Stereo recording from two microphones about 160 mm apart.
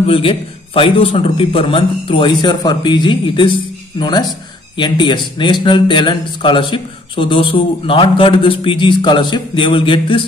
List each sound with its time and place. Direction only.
0.0 s a man's voice: 35° left (ahead or behind)